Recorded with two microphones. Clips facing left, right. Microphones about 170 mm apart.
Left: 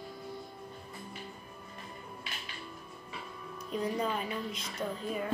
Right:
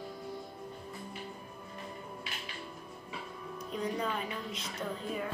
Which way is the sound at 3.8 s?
10° left (ahead or behind).